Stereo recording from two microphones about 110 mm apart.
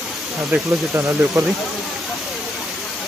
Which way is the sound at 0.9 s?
30° right (ahead or behind).